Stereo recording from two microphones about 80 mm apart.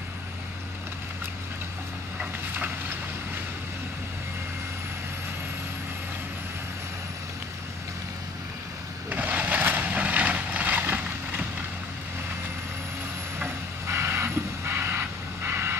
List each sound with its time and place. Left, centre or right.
9.1 s vehicle: right
13.8 s vehicle: right